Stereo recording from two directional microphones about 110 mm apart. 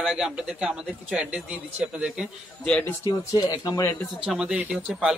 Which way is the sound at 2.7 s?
10° left (ahead or behind).